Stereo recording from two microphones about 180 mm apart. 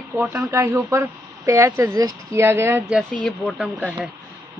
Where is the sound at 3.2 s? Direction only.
Centre (ahead or behind).